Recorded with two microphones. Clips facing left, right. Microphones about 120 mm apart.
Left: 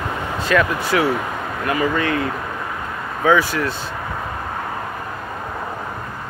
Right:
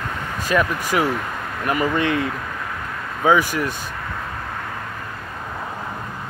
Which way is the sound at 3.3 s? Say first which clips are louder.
Left 1 dB; 15° right (ahead or behind).